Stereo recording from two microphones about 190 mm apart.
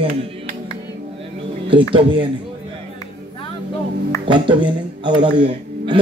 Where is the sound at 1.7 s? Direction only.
25° right (ahead or behind).